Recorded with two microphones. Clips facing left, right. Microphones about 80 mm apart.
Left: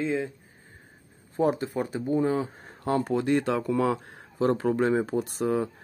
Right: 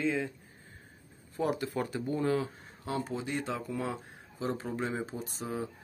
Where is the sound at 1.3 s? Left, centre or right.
Left.